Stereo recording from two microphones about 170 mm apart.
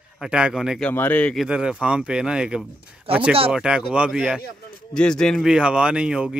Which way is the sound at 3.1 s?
35° right (ahead or behind).